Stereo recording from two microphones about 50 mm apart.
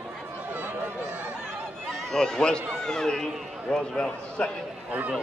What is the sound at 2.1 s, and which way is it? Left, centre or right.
A man's voice, centre.